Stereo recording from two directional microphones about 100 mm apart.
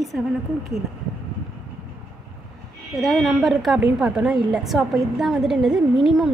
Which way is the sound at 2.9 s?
Centre (ahead or behind).